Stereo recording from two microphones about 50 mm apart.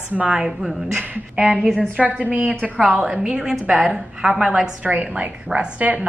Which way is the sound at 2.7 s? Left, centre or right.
Centre.